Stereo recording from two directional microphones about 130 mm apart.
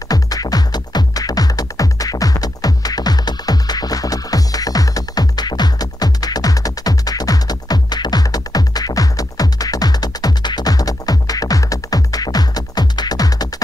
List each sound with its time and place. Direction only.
0.1 s music: 30° left (ahead or behind)